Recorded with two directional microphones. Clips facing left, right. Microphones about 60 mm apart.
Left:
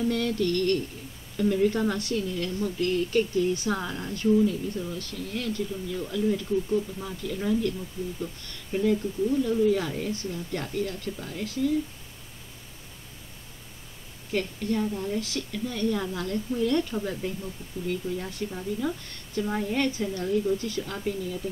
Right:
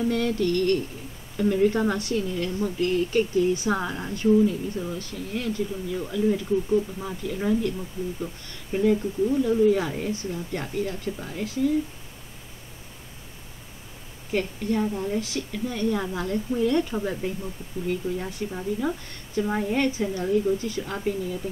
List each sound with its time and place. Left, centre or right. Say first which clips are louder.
0.0 s a woman's voice: right 2 dB; centre
14.3 s a woman's voice: right 2 dB; centre